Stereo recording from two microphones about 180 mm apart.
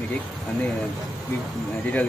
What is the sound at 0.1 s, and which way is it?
Speech, 5° left (ahead or behind).